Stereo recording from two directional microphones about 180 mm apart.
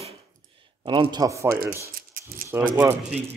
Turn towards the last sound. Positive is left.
turn(degrees=-10)  # may be behind; listen again after turning